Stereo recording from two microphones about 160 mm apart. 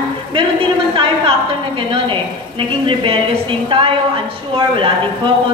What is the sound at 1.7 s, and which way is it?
A woman's voice, 30° right (ahead or behind).